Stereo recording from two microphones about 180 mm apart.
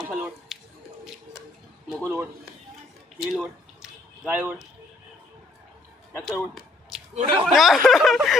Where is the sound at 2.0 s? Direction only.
10° right (ahead or behind).